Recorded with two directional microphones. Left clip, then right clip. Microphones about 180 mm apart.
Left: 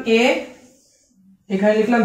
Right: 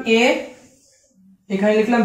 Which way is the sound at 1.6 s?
10° left (ahead or behind).